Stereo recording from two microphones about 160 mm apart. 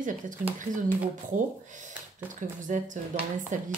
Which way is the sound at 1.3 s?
55° right (ahead or behind).